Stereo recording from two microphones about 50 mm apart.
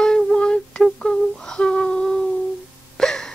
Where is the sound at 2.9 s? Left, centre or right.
Centre.